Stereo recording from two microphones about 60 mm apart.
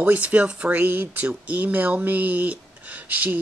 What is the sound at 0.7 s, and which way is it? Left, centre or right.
Speech, right.